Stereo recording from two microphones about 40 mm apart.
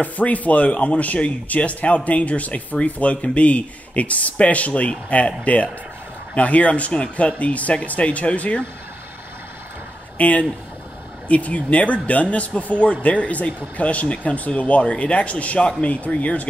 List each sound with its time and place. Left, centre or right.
0.0 s speech: left
10.1 s speech: left